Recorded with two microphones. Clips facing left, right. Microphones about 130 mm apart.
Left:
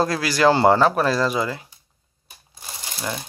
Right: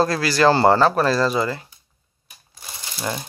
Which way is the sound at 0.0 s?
15° left (ahead or behind).